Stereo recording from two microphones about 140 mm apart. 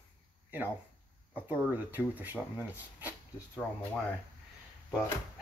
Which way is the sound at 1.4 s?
15° right (ahead or behind).